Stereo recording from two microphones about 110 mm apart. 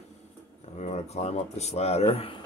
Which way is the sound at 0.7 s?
80° left.